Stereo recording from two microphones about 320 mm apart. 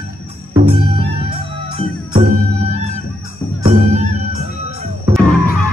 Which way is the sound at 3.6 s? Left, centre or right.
Right.